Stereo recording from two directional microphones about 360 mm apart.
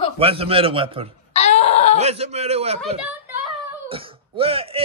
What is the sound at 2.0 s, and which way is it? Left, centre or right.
Speech, centre.